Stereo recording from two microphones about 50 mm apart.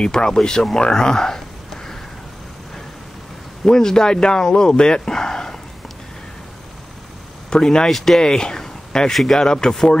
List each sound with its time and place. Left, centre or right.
0.0 s speech: centre
3.6 s speech: centre
7.4 s speech: centre
7.9 s speech: centre
8.2 s a sound: centre
9.1 s speech: centre